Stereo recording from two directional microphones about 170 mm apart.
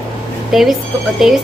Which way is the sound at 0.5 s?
Centre (ahead or behind).